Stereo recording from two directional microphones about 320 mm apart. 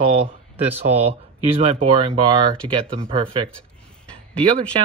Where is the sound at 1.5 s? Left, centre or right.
Centre.